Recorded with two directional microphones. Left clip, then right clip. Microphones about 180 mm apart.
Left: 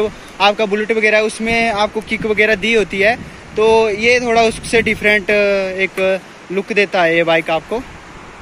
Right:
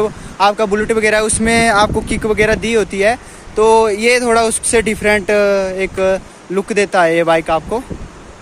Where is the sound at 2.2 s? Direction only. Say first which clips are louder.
Even; 10° right (ahead or behind).